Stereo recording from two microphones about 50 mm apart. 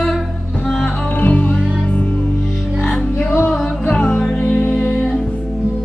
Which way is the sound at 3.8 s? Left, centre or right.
Left.